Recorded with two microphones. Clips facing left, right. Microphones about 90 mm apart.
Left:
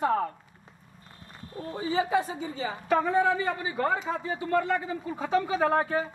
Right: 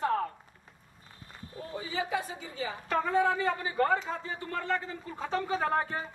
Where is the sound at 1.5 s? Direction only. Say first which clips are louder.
Left 7 dB; 40° left (ahead or behind).